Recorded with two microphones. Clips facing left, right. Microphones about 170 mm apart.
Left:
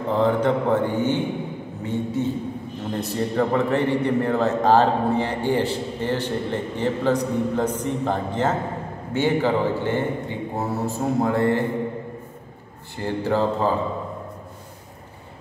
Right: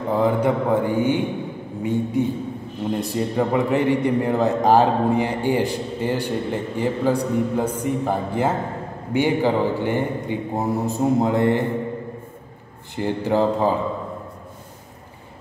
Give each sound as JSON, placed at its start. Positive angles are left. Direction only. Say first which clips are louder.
{"t": 0.1, "sound": "a man's voice", "louder": "even", "side_deg": -10}
{"t": 12.9, "sound": "a man's voice", "louder": "right 2 dB", "side_deg": -15}